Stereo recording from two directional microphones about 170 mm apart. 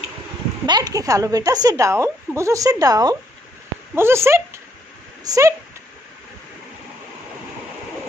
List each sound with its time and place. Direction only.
0.7 s a woman's voice: 25° right (ahead or behind)